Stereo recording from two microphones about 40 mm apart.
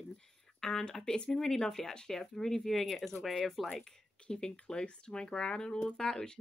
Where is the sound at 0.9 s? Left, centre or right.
Centre.